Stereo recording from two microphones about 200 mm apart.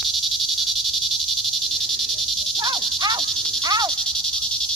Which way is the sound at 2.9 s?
20° right (ahead or behind).